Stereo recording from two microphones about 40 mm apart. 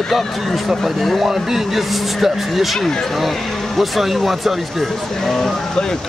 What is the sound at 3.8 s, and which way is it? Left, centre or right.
Speech, centre.